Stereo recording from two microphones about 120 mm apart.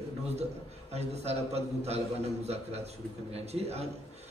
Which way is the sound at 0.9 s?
60° right (ahead or behind).